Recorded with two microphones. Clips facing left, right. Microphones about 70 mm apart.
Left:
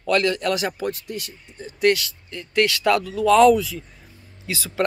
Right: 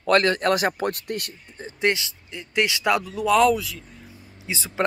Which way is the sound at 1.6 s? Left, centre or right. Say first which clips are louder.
Left 4 dB; right.